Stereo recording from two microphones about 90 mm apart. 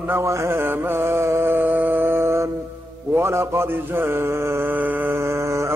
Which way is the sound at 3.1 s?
30° right (ahead or behind).